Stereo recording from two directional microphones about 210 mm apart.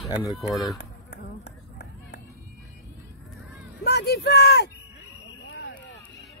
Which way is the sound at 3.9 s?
50° left (ahead or behind).